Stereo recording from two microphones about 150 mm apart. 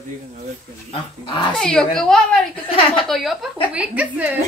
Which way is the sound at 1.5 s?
5° left (ahead or behind).